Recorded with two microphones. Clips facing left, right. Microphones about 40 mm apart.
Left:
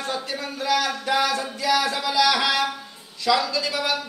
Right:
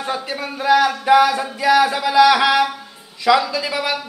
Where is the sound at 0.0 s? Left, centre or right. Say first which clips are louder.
Right 4 dB; centre.